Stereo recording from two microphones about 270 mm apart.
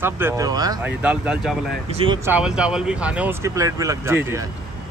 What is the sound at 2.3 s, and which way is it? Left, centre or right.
Speech, centre.